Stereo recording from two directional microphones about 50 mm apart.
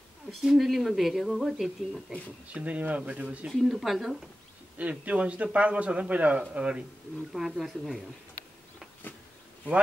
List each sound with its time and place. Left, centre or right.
0.4 s speech: centre
2.5 s a man's voice: right
3.6 s speech: centre
4.7 s a man's voice: right
7.5 s speech: centre